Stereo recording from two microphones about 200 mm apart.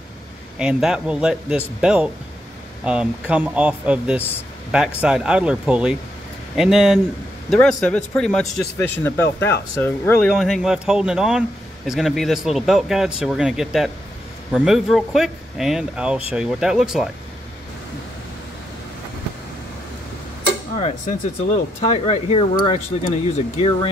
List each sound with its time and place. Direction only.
0.6 s a man's voice: 5° right (ahead or behind)
10.3 s a man's voice: centre (ahead or behind)
21.9 s speech: 30° left (ahead or behind)